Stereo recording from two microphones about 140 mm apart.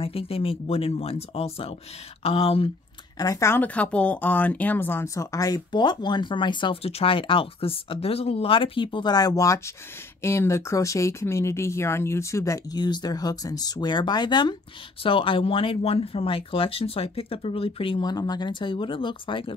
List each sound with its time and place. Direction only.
0.0 s speech: 45° left (ahead or behind)
3.2 s a woman's voice: 25° left (ahead or behind)